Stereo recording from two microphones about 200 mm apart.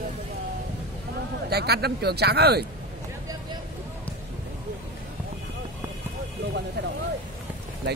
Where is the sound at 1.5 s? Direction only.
55° right (ahead or behind).